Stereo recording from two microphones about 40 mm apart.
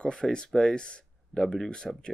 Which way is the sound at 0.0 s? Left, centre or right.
Left.